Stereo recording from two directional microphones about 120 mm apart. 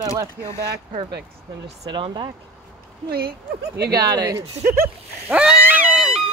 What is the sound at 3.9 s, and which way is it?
Speech, 35° right (ahead or behind).